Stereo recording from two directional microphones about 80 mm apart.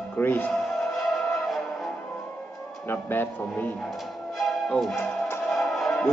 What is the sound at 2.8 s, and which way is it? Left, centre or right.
Speech, left.